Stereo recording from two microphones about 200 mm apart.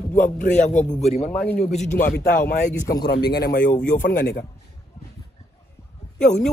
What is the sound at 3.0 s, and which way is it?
Speech, 55° left (ahead or behind).